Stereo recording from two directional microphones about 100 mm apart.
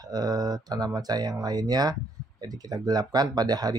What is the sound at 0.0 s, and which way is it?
Speech, 40° right (ahead or behind).